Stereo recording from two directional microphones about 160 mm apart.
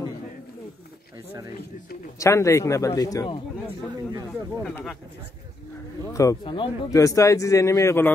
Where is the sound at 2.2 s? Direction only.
15° left (ahead or behind).